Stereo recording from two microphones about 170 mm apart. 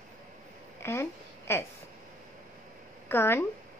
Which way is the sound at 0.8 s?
15° left (ahead or behind).